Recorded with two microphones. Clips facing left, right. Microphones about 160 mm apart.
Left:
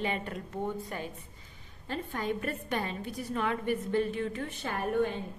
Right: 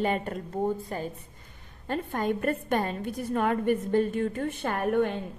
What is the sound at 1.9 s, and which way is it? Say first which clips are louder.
A woman's voice: right 5 dB; 50° right (ahead or behind).